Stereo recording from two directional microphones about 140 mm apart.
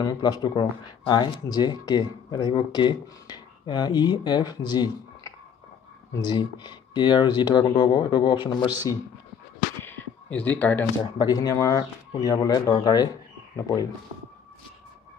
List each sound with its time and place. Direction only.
0.0 s speech: 30° left (ahead or behind)
9.8 s a sound: 15° left (ahead or behind)
11.1 s speech: 25° left (ahead or behind)